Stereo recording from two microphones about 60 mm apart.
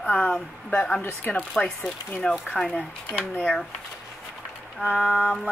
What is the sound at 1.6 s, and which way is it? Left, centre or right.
Speech, centre.